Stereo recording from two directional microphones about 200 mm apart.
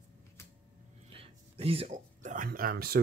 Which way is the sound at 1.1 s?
30° right (ahead or behind).